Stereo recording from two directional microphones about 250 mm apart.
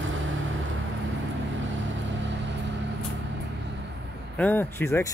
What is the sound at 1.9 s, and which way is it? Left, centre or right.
Vehicle, right.